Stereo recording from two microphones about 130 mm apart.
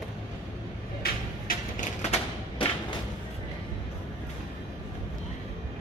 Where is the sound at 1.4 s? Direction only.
70° left (ahead or behind).